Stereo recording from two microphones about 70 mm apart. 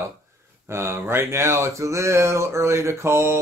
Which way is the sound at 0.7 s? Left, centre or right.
Right.